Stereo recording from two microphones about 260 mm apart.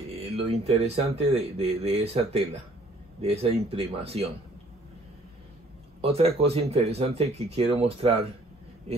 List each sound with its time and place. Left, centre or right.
0.1 s speech: right
5.9 s speech: right